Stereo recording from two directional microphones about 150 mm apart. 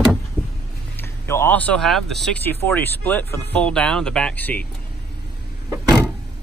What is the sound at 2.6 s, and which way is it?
Speech, 15° left (ahead or behind).